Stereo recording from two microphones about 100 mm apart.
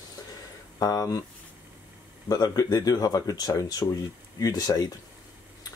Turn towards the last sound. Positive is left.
turn(degrees=35)  # may be behind; listen again after turning